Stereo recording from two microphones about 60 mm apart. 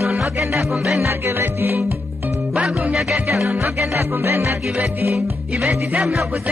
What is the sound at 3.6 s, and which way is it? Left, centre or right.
Music, right.